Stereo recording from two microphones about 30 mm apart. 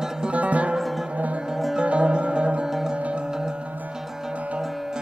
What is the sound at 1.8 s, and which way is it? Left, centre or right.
Music, right.